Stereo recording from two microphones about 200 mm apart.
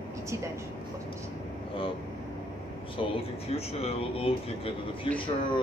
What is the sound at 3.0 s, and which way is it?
Speech, 30° left (ahead or behind).